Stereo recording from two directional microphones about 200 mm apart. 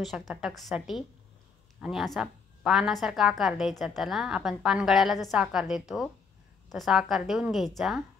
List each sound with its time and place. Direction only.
0.3 s a woman's voice: centre (ahead or behind)